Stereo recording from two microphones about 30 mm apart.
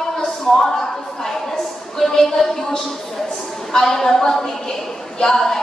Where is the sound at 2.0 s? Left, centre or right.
Centre.